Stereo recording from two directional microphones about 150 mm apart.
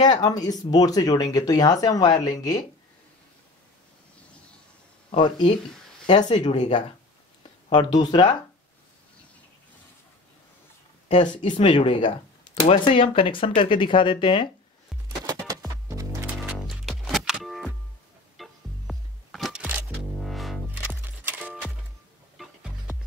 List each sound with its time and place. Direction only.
0.0 s speech: 25° left (ahead or behind)
6.0 s speech: 30° left (ahead or behind)
6.3 s speech: 50° left (ahead or behind)
7.7 s speech: 30° left (ahead or behind)
11.1 s speech: 55° left (ahead or behind)
11.5 s speech: 35° left (ahead or behind)
16.3 s music: centre (ahead or behind)
20.7 s music: 10° right (ahead or behind)